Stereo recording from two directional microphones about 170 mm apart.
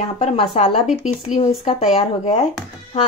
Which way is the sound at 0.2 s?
35° left (ahead or behind).